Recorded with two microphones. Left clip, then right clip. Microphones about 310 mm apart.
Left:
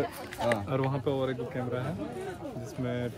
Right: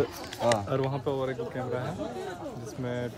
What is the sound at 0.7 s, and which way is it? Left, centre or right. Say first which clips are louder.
Speech: right 1 dB; centre.